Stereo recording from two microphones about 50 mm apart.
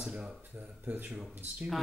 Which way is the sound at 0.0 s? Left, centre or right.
Centre.